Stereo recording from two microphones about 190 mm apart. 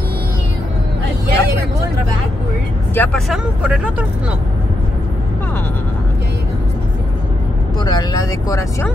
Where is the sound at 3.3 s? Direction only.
5° right (ahead or behind).